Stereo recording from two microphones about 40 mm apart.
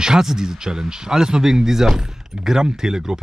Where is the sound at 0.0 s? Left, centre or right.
Centre.